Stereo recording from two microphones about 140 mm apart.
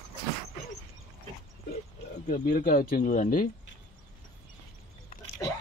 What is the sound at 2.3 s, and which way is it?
Speech, 80° left.